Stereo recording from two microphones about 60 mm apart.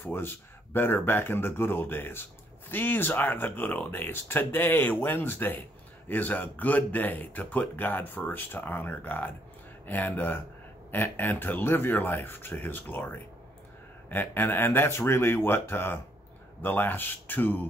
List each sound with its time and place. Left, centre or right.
0.0 s speech: left